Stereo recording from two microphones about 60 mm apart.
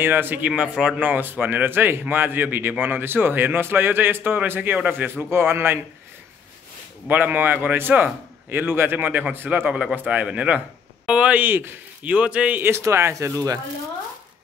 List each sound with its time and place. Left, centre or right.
0.0 s speech: right
0.5 s a man's voice: centre
0.9 s speech: right
7.1 s speech: right
9.9 s a man's voice: right
11.3 s speech: right
12.0 s a man's voice: right
12.6 s speech: right